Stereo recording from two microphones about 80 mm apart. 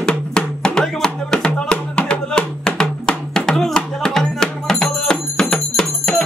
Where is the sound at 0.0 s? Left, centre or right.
Centre.